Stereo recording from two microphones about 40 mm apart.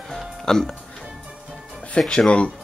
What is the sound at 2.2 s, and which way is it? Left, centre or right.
Speech, left.